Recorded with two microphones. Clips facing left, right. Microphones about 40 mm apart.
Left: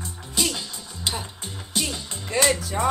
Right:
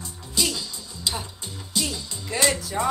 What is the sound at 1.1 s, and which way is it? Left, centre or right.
Music, left.